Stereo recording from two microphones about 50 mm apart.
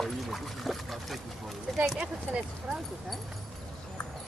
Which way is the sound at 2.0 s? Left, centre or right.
Right.